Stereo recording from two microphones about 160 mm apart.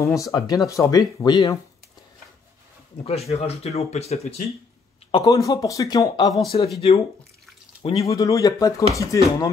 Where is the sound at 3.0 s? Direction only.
40° left (ahead or behind).